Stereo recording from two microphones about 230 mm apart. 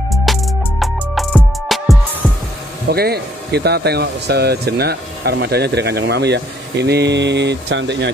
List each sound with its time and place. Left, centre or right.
0.1 s music: centre
2.9 s speech: right